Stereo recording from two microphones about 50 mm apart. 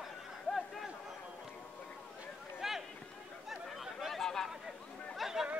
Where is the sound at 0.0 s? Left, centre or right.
Centre.